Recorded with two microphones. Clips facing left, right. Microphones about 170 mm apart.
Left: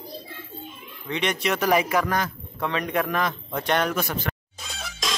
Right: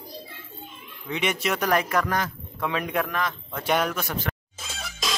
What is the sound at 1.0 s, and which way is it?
Speech, 5° right (ahead or behind).